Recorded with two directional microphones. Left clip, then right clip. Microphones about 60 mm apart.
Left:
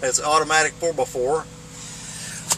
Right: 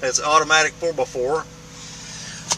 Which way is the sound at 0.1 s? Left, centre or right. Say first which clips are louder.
Right 3 dB; centre.